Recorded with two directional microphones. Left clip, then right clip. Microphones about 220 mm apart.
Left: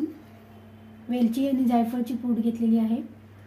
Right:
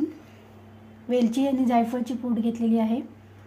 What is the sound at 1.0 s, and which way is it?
Speech, 25° right (ahead or behind).